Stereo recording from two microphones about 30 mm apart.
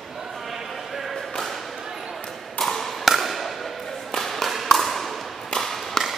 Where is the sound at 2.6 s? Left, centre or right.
Centre.